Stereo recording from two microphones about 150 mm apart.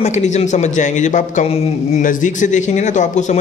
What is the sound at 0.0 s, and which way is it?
A man's voice, 50° left (ahead or behind).